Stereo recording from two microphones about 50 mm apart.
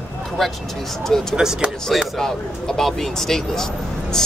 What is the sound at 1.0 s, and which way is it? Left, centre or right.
Speech, centre.